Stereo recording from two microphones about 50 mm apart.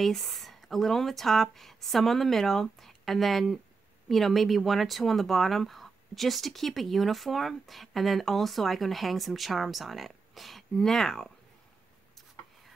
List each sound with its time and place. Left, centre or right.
0.0 s speech: centre